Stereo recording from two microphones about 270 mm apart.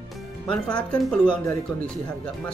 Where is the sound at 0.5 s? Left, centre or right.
Centre.